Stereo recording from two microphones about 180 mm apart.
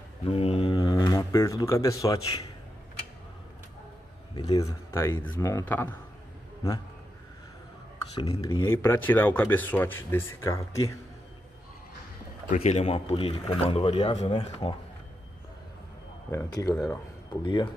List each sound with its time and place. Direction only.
0.2 s mantra: 35° left (ahead or behind)
0.7 s a sound: 20° left (ahead or behind)
4.4 s speech: 20° left (ahead or behind)
8.2 s speech: 30° left (ahead or behind)
8.6 s speech: 15° left (ahead or behind)
12.4 s speech: 35° left (ahead or behind)
16.3 s speech: 20° left (ahead or behind)